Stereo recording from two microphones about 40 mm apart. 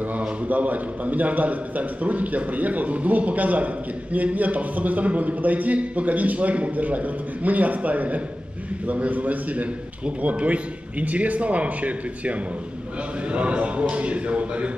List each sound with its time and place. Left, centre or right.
0.5 s a man's voice: right